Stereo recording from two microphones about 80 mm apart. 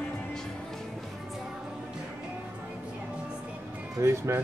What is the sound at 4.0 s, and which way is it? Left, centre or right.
Speech, right.